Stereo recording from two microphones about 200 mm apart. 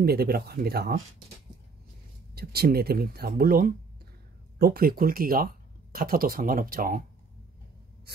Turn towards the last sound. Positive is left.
turn(degrees=-45)  # may be behind; listen again after turning